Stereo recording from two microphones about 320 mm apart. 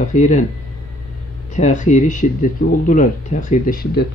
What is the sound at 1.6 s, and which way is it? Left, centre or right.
A man's voice, left.